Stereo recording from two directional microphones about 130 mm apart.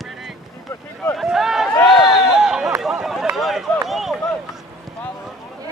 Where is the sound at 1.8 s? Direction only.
Centre (ahead or behind).